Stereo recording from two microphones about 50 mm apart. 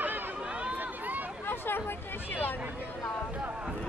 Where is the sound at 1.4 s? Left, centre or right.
Left.